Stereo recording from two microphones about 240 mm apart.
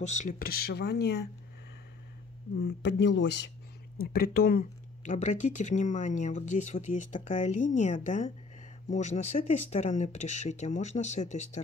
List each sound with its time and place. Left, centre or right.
0.2 s speech: left
2.5 s speech: left